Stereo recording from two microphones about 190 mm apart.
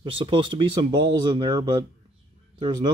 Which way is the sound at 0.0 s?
30° right (ahead or behind).